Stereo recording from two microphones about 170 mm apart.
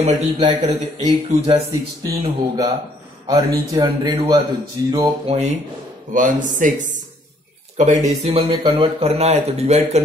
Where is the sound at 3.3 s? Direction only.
20° right (ahead or behind).